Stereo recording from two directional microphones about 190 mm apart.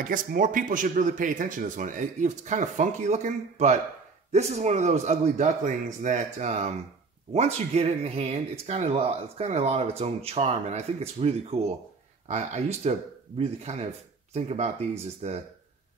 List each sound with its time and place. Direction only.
0.0 s speech: 45° right (ahead or behind)